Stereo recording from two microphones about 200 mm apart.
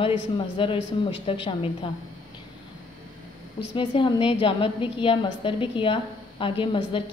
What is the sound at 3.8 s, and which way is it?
A woman's voice, 25° left (ahead or behind).